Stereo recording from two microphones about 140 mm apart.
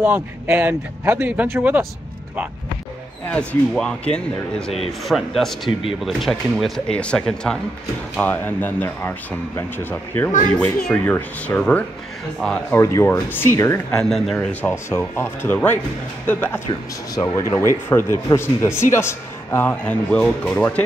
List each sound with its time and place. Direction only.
0.0 s speech: 15° right (ahead or behind)
3.3 s a man's voice: 5° left (ahead or behind)
12.7 s speech: 20° left (ahead or behind)
13.9 s a man's voice: 5° left (ahead or behind)